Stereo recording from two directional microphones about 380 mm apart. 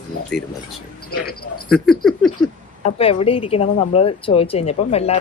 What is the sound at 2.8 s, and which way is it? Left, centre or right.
Speech, centre.